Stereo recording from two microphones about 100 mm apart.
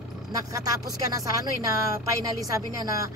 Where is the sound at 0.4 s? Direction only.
35° right (ahead or behind).